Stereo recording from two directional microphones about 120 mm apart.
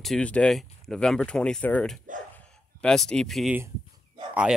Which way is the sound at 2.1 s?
90° right.